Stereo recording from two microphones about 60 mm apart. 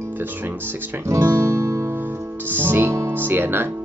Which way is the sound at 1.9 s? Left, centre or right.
Right.